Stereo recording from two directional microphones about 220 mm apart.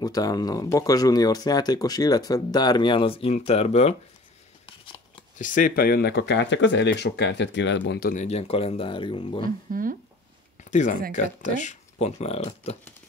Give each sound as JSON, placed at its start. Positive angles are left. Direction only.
{"t": 0.0, "sound": "speech", "side_deg": 15}
{"t": 5.4, "sound": "speech", "side_deg": 35}
{"t": 8.1, "sound": "speech", "side_deg": 30}
{"t": 9.7, "sound": "speech", "side_deg": -40}
{"t": 10.6, "sound": "speech", "side_deg": 35}